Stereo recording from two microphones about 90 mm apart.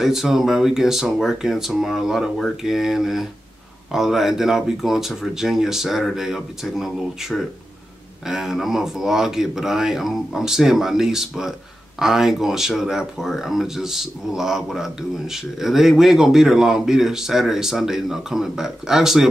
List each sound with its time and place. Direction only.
0.0 s speech: 5° right (ahead or behind)